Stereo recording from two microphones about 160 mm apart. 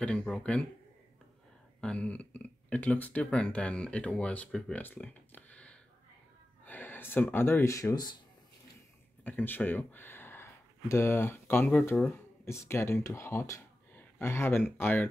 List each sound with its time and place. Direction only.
0.0 s speech: 5° left (ahead or behind)
1.8 s speech: 5° left (ahead or behind); by 8.2 s 25° left (ahead or behind)
9.2 s speech: 10° left (ahead or behind)